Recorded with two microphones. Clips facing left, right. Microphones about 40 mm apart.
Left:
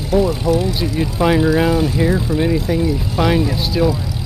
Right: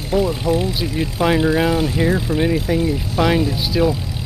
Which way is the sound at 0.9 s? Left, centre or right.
Centre.